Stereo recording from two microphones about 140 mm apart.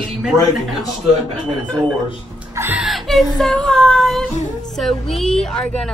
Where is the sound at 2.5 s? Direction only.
20° right (ahead or behind).